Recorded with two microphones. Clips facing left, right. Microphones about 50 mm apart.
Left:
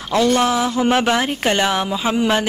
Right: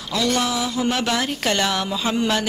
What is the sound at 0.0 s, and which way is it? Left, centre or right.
Speech, left.